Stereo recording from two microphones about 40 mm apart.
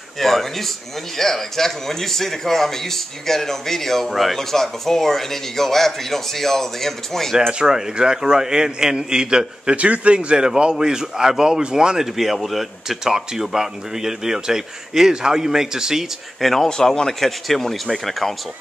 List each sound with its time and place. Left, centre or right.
0.2 s a man's voice: centre
7.5 s speech: centre
9.8 s speech: right; by 12.1 s centre
12.2 s speech: centre
16.3 s speech: centre
16.6 s speech: centre